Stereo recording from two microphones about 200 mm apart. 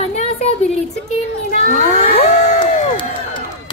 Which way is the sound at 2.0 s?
35° left (ahead or behind).